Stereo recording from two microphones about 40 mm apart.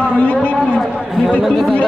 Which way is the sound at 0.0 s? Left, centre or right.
Left.